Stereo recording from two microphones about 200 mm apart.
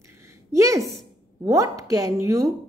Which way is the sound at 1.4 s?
15° right (ahead or behind).